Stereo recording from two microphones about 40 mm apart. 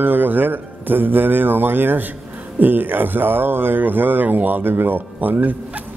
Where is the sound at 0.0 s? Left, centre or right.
Right.